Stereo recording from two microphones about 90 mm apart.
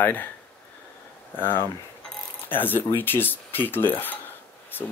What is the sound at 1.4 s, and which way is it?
Speech, 25° left (ahead or behind).